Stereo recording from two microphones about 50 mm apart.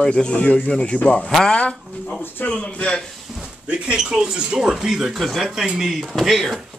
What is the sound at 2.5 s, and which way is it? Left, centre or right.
Speech, left.